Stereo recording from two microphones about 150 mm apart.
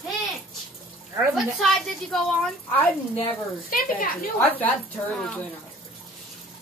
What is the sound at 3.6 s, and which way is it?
Speech, 70° left (ahead or behind).